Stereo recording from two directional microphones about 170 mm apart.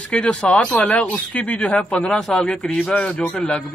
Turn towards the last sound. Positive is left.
turn(degrees=5)  # may be behind; listen again after turning